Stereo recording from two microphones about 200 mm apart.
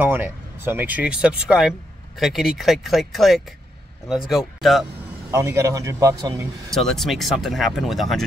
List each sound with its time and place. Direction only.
0.0 s speech: 10° right (ahead or behind)
5.3 s speech: 15° right (ahead or behind)
6.7 s speech: centre (ahead or behind)